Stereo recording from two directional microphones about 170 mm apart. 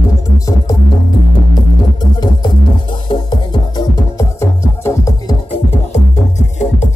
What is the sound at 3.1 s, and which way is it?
Music, 25° left (ahead or behind).